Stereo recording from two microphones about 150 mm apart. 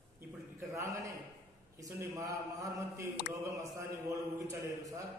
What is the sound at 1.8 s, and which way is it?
A man's voice, 20° right (ahead or behind).